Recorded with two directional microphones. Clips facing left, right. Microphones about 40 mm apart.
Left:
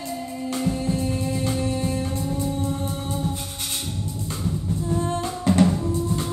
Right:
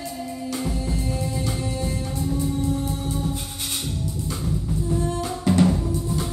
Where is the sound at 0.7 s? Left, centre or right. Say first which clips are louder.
Left 3 dB; left.